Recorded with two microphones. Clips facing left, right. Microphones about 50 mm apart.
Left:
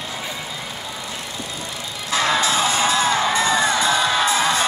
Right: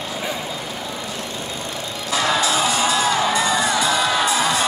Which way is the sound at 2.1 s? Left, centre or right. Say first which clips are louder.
Even; left.